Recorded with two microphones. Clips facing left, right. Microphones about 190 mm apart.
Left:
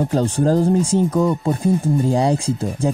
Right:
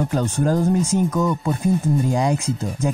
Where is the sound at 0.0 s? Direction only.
30° left (ahead or behind).